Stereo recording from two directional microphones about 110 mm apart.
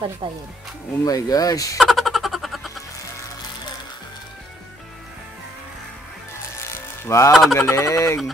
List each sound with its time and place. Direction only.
0.2 s speech: 45° right (ahead or behind)
1.0 s speech: 35° left (ahead or behind)
1.8 s a sound: centre (ahead or behind)
6.6 s music: 25° left (ahead or behind)
7.5 s speech: 25° left (ahead or behind)